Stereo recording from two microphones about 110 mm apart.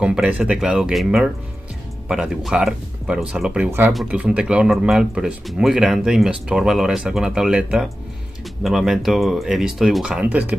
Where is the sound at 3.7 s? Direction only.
20° right (ahead or behind).